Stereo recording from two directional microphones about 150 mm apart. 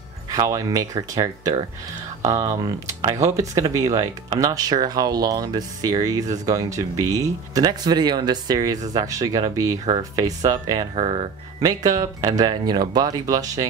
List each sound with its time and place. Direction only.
0.3 s speech: 25° right (ahead or behind)
11.0 s speech: 40° right (ahead or behind)
11.6 s speech: 25° right (ahead or behind)